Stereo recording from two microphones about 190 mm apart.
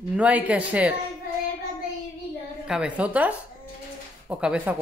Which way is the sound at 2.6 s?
5° right (ahead or behind).